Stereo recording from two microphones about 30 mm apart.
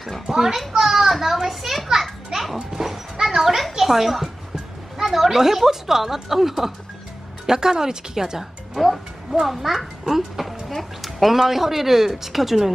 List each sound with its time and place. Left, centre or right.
0.3 s a child's voice: centre
1.9 s children playing: centre
2.7 s dog: centre
3.8 s speech: centre
7.4 s speech: right
8.7 s a child's voice: centre